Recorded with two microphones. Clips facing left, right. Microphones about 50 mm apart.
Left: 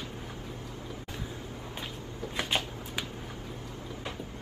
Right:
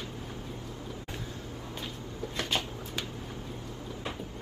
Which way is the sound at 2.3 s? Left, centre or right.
Centre.